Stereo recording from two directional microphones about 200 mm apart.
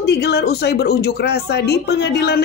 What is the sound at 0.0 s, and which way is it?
A woman's voice, 55° left (ahead or behind).